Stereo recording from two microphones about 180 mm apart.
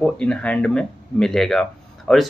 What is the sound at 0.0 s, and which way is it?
Speech, 5° left (ahead or behind).